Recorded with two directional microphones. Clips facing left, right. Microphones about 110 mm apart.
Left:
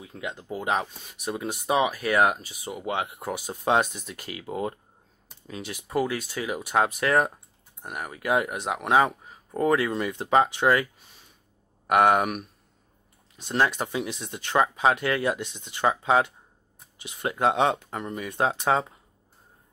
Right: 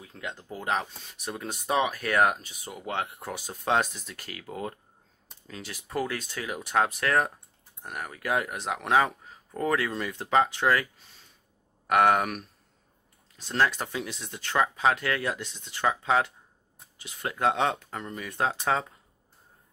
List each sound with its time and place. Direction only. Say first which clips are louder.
0.0 s speech: left 3 dB; 10° left (ahead or behind)
11.9 s speech: left 2 dB; 15° left (ahead or behind)